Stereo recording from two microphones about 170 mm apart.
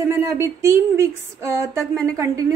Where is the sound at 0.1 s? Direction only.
15° right (ahead or behind).